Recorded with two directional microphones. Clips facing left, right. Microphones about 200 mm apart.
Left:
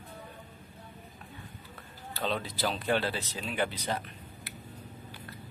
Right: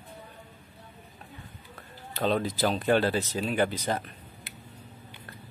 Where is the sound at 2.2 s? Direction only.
45° right (ahead or behind).